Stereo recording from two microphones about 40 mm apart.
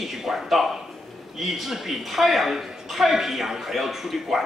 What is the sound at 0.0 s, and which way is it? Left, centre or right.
A woman's voice, centre.